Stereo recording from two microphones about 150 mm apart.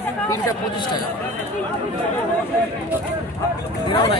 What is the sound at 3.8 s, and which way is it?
Speech, 35° left (ahead or behind).